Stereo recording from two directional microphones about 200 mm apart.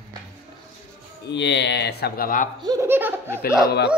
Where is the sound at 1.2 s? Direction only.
60° left (ahead or behind); by 2.4 s 45° left (ahead or behind).